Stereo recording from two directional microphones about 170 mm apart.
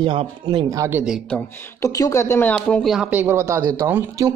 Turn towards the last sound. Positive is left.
turn(degrees=-15)  # may be behind; listen again after turning